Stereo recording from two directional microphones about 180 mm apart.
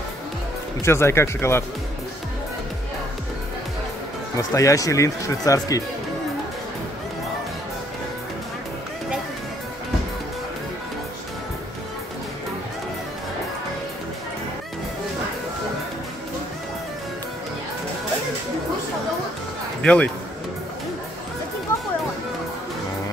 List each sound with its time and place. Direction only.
0.8 s speech: 15° left (ahead or behind)
4.4 s speech: 20° left (ahead or behind)
19.8 s speech: 5° left (ahead or behind)